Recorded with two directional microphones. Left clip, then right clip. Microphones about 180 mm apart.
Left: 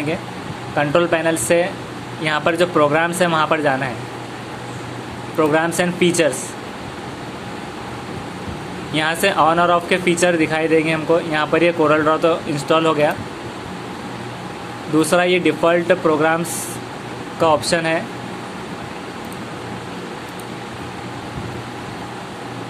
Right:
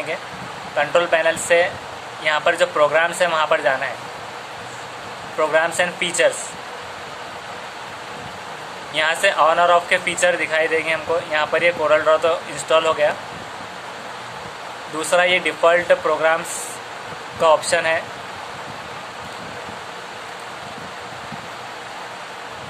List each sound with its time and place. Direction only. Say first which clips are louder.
0.7 s speech: even; 20° left (ahead or behind)
5.4 s speech: left 1 dB; 20° left (ahead or behind)
8.9 s speech: even; 20° left (ahead or behind)
15.0 s speech: left 1 dB; 15° left (ahead or behind)
17.4 s speech: even; 20° left (ahead or behind)